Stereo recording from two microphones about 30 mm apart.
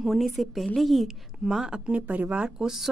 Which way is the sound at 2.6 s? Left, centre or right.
Centre.